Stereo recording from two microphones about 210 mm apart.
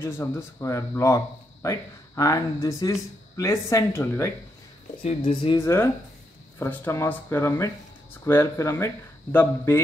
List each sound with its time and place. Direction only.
0.0 s speech: 10° left (ahead or behind)
5.0 s speech: 25° left (ahead or behind)
5.6 s speech: 15° left (ahead or behind)